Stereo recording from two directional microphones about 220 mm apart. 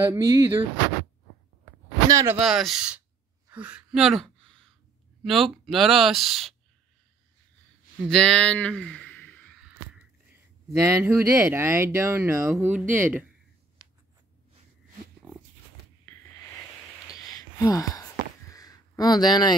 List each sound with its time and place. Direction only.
0.0 s speech: 10° right (ahead or behind)
2.0 s speech: 15° right (ahead or behind)
2.4 s speech: centre (ahead or behind)
8.1 s speech: 5° left (ahead or behind)
9.6 s a sound: 5° right (ahead or behind)
10.8 s speech: 10° right (ahead or behind)
17.2 s a sound: 15° left (ahead or behind)